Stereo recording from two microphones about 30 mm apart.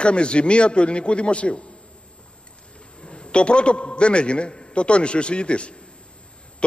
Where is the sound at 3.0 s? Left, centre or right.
Left.